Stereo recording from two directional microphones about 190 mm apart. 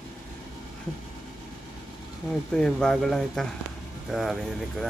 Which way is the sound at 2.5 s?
5° left (ahead or behind).